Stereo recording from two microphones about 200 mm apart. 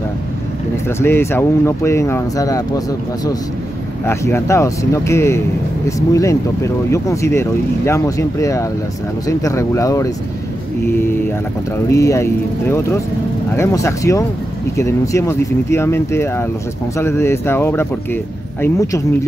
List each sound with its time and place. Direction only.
0.8 s speech: 10° left (ahead or behind)
4.0 s speech: 15° left (ahead or behind)
11.9 s speech: 15° left (ahead or behind)